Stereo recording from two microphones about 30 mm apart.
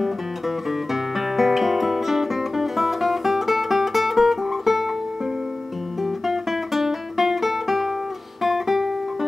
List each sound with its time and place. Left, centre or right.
0.7 s guitar: centre
6.0 s music: centre